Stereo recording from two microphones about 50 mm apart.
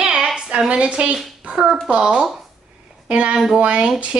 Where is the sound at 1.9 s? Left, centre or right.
Centre.